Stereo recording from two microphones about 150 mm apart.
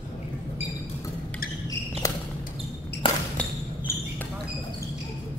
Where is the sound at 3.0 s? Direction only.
35° left (ahead or behind).